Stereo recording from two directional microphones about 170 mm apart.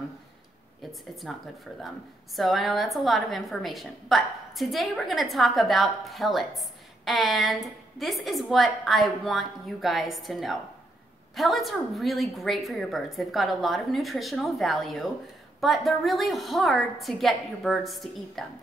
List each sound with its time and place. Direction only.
1.3 s a woman's voice: centre (ahead or behind)